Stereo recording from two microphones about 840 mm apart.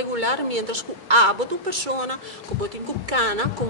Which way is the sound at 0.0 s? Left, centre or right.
Right.